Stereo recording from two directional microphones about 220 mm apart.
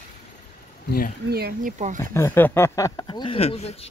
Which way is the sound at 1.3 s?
45° right (ahead or behind).